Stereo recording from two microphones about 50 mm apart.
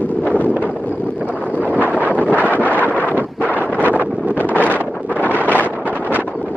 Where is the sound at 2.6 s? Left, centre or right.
Left.